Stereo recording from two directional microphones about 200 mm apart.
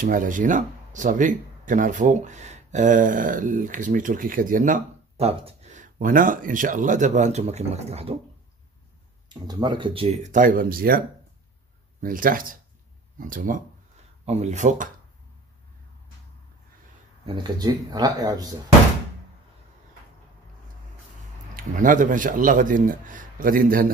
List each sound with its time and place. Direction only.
0.0 s speech: 40° right (ahead or behind)
9.3 s speech: 20° right (ahead or behind); by 14.9 s 35° right (ahead or behind)
17.3 s speech: 20° right (ahead or behind)
21.5 s speech: 40° right (ahead or behind)